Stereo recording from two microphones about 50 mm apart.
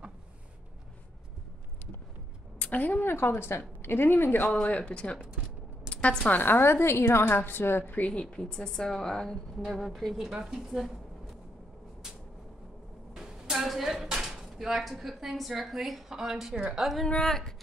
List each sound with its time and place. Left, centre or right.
2.6 s a woman's voice: left
3.0 s a woman's voice: left
4.6 s speech: left
5.9 s a sound: left
6.2 s a woman's voice: left
8.1 s a woman's voice: centre
9.7 s speech: centre
13.1 s a sound: centre
14.2 s speech: centre
17.2 s a woman's voice: centre